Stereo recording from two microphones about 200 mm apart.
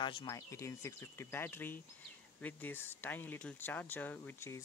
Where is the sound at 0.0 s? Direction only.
20° left (ahead or behind).